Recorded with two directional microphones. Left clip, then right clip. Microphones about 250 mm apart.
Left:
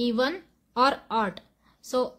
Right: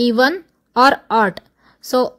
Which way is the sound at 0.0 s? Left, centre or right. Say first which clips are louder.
Right 11 dB; right.